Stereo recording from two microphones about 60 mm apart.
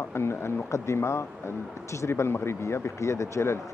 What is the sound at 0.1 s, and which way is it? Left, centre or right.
Speech, left.